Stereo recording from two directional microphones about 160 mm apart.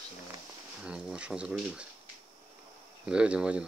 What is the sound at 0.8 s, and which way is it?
Speech, 5° right (ahead or behind).